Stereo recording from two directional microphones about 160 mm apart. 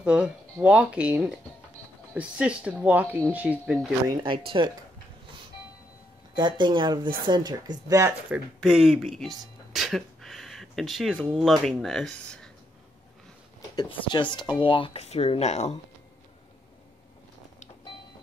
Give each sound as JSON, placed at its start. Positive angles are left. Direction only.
{"t": 0.0, "sound": "speech", "side_deg": -5}
{"t": 4.1, "sound": "speech", "side_deg": -30}
{"t": 6.3, "sound": "speech", "side_deg": -30}
{"t": 8.5, "sound": "speech", "side_deg": 0}
{"t": 13.7, "sound": "speech", "side_deg": 30}